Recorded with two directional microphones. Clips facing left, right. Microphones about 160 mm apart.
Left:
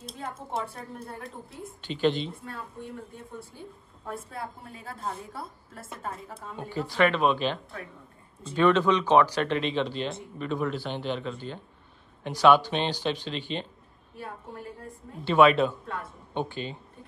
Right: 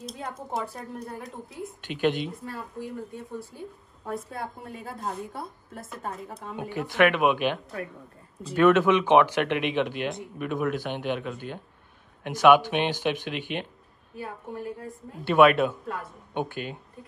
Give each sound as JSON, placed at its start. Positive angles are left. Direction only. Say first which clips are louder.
{"t": 0.0, "sound": "a woman's voice", "louder": "right 2 dB", "side_deg": 0}
{"t": 1.9, "sound": "a woman's voice", "louder": "even", "side_deg": -10}
{"t": 6.5, "sound": "a woman's voice", "louder": "right 1 dB", "side_deg": -10}